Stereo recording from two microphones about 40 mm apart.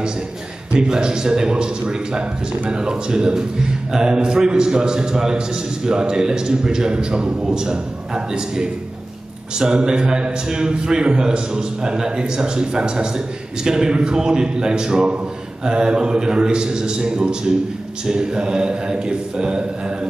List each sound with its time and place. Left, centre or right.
0.7 s a man's voice: centre
9.8 s a man's voice: right